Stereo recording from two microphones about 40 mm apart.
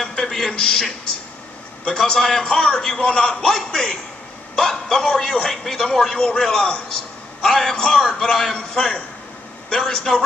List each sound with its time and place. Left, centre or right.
0.0 s a sound: centre
1.9 s a man's voice: centre
2.4 s a man's voice: left
7.4 s a man's voice: centre
9.8 s a man's voice: centre